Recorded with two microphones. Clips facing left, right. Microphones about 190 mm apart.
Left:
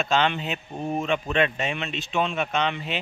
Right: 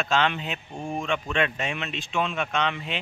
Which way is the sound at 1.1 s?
35° left (ahead or behind).